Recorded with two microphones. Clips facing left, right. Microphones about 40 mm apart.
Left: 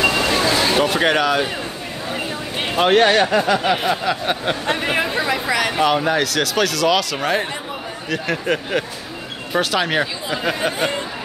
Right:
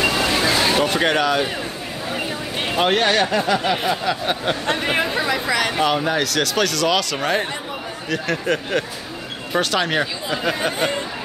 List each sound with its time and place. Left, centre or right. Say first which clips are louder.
0.1 s vehicle: left 1 dB; centre
2.0 s speech: even; centre
5.3 s chatter: left 1 dB; left
5.7 s speech: left 2 dB; centre